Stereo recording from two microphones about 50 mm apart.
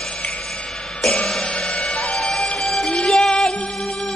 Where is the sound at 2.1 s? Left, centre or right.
Centre.